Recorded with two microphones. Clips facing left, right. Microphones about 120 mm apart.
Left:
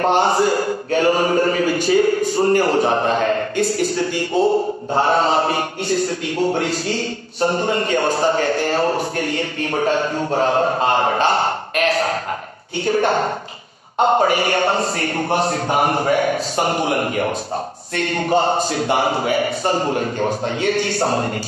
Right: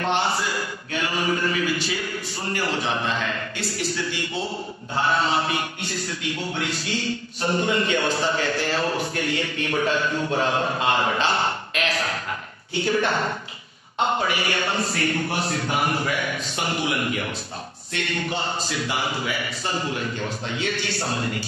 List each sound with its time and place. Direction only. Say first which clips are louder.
0.0 s speech: left 8 dB; 45° left (ahead or behind)